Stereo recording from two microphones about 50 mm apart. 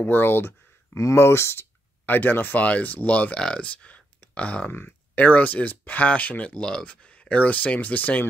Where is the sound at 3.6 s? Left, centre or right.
Left.